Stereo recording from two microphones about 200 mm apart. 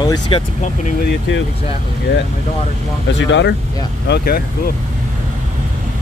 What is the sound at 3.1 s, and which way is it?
Speech, 65° left (ahead or behind).